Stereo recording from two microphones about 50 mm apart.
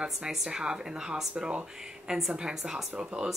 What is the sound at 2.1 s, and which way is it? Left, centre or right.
Speech, centre.